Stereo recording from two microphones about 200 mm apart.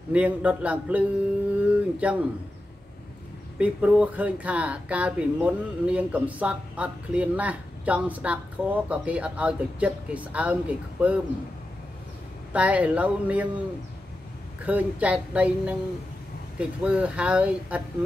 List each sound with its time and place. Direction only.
0.1 s speech: 5° right (ahead or behind)
1.6 s a sound: 5° right (ahead or behind)
3.5 s speech: 5° right (ahead or behind)
12.5 s speech: 5° right (ahead or behind)
14.6 s speech: 5° right (ahead or behind)